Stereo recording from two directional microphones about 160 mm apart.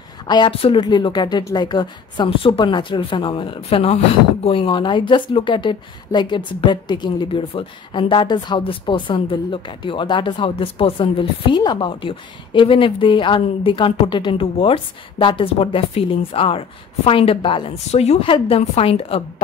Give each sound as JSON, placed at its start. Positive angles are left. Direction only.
{"t": 0.3, "sound": "speech", "side_deg": 30}